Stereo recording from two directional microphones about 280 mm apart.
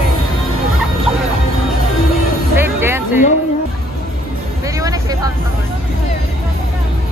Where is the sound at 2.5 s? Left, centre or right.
Centre.